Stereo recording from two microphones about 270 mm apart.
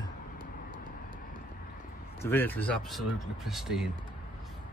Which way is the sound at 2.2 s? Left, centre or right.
Centre.